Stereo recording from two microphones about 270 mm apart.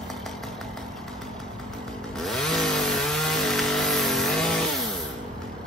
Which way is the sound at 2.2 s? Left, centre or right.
Centre.